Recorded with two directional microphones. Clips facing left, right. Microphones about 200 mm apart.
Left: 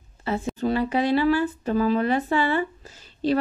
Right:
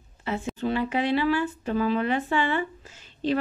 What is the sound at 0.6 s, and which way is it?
Speech, 40° left (ahead or behind).